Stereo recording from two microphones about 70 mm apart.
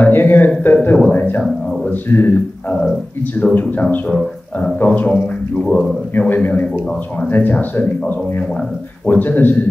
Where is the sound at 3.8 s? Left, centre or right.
Left.